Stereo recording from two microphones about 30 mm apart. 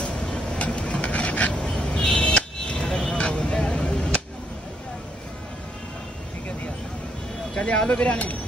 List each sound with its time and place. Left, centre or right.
0.6 s a sound: left
1.6 s vehicle: left
7.5 s speech: left